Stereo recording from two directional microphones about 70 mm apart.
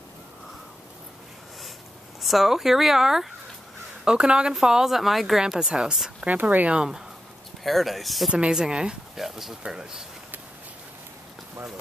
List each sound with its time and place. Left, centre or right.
2.2 s speech: centre
6.2 s speech: right
7.6 s speech: centre
8.3 s speech: centre